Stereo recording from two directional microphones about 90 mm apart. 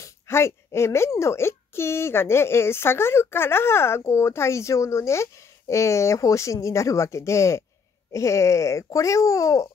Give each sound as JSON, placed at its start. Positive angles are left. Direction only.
{"t": 0.0, "sound": "a child's voice", "side_deg": 30}